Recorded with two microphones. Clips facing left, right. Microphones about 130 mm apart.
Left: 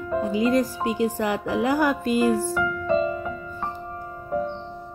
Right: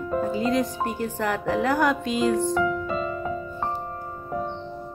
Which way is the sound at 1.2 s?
15° left (ahead or behind).